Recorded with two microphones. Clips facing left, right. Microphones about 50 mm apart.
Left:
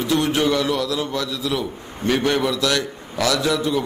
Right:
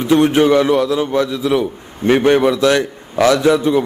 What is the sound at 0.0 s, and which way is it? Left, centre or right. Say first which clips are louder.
A man's voice: right 7 dB; right.